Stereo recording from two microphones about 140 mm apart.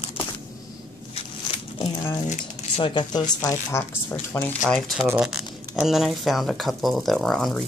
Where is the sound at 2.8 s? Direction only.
30° left (ahead or behind).